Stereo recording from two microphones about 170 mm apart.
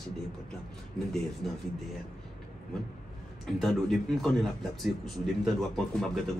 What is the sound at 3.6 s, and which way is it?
Speech, centre (ahead or behind).